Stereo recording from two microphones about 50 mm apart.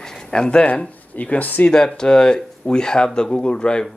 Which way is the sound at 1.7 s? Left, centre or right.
Centre.